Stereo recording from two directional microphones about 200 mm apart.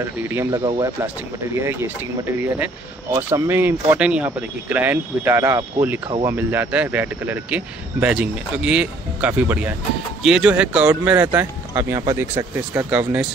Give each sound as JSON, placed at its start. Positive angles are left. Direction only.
{"t": 0.3, "sound": "speech", "side_deg": -10}